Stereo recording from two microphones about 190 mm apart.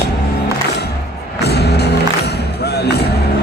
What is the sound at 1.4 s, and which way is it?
Music, 60° left (ahead or behind).